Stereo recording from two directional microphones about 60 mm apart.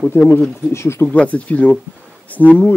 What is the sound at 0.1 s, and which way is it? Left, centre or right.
Speech, left.